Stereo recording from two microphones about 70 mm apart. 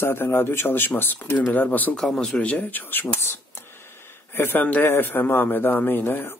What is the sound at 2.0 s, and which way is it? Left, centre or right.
A man's voice, centre.